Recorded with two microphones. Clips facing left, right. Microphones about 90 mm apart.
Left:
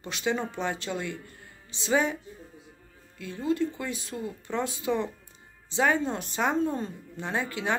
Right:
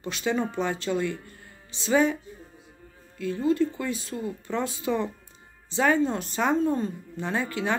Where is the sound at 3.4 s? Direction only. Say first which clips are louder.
Right 3 dB; 15° left (ahead or behind).